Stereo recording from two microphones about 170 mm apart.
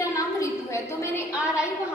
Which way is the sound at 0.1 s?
20° left (ahead or behind).